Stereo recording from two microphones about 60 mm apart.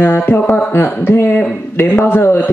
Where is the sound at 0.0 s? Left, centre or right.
Left.